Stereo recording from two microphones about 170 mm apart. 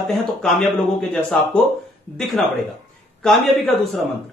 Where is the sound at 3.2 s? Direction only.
Centre (ahead or behind).